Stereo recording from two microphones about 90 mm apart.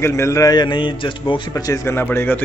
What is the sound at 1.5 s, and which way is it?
Speech, 35° left (ahead or behind).